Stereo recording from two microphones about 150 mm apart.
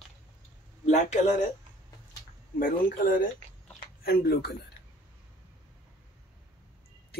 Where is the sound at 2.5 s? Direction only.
70° left (ahead or behind).